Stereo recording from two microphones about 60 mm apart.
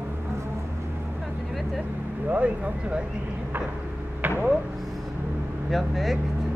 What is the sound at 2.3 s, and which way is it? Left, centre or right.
Speech, right.